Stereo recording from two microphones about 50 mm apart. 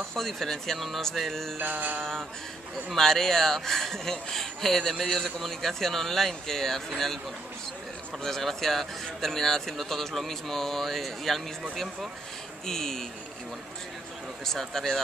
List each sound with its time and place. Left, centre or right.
0.1 s speech: centre
1.6 s music: right
2.0 s speech: centre
8.2 s speech: centre
14.4 s speech: centre